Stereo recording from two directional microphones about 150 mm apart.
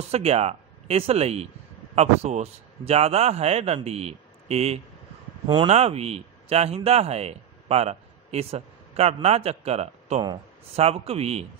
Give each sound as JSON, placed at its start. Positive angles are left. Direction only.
{"t": 0.1, "sound": "speech", "side_deg": -45}